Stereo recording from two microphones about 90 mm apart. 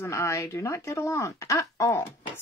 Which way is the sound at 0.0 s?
35° left (ahead or behind).